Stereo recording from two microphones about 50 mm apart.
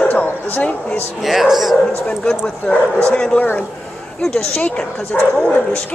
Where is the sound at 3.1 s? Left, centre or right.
Centre.